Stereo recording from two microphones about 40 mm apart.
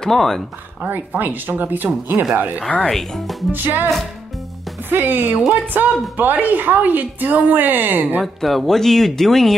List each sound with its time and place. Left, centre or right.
0.0 s speech: centre
0.8 s a woman's voice: right
2.9 s speech: centre
3.5 s a woman's voice: right
8.2 s speech: centre